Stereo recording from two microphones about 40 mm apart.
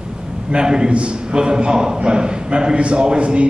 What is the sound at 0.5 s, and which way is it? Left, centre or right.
A man's voice, centre.